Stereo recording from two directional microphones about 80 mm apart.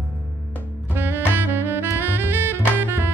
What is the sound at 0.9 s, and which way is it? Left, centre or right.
Saxophone, right.